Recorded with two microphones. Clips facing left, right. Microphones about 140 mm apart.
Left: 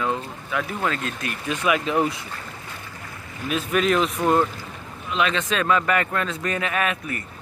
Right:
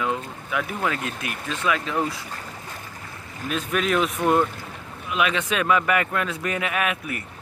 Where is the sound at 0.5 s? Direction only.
10° right (ahead or behind).